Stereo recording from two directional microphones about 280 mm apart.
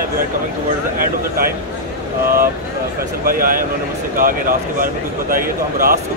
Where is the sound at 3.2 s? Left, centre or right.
Right.